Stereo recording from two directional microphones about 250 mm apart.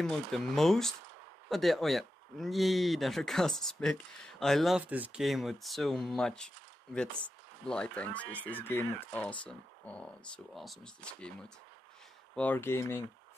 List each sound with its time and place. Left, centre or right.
0.0 s speech: centre